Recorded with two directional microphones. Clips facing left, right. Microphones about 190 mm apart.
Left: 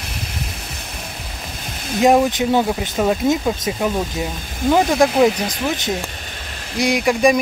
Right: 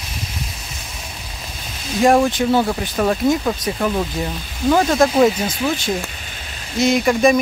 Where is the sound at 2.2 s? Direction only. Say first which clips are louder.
Even; 15° left (ahead or behind).